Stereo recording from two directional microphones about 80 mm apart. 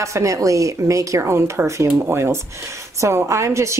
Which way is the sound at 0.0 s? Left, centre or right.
Right.